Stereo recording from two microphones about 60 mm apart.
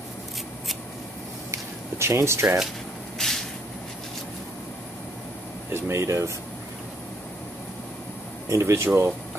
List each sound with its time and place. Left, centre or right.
1.5 s a sound: right
3.2 s vehicle: centre
5.7 s speech: right
8.5 s speech: right